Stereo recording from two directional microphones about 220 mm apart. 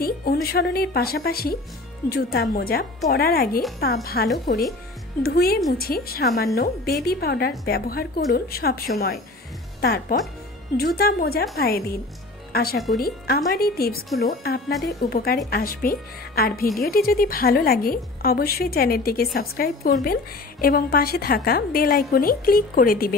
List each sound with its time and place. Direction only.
0.0 s a woman's voice: 45° left (ahead or behind)